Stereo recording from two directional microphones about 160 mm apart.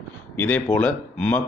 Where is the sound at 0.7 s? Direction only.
10° left (ahead or behind).